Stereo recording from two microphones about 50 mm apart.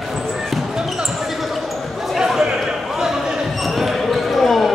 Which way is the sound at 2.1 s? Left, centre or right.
Centre.